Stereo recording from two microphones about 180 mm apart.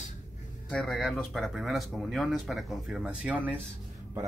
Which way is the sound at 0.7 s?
5° left (ahead or behind).